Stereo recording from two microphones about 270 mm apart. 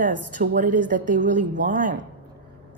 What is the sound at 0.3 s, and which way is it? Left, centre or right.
A woman's voice, right.